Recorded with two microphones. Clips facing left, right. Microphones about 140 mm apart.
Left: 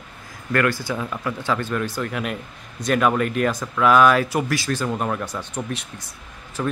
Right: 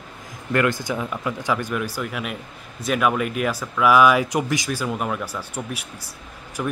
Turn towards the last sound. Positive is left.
turn(degrees=-10)  # may be behind; listen again after turning